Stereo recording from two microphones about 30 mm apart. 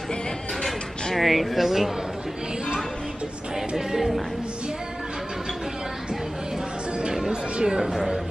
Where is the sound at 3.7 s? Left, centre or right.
Centre.